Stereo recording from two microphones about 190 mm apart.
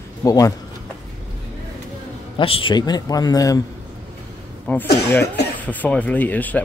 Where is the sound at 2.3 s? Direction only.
30° left (ahead or behind).